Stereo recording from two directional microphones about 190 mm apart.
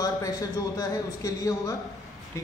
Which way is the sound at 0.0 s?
20° left (ahead or behind).